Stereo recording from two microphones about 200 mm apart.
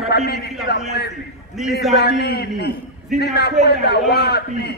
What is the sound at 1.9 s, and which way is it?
A man's voice, 55° left (ahead or behind).